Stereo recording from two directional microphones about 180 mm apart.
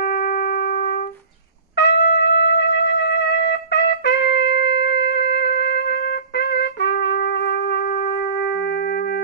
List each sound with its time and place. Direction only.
0.0 s music: 55° left (ahead or behind)
1.8 s trumpet: 70° left (ahead or behind)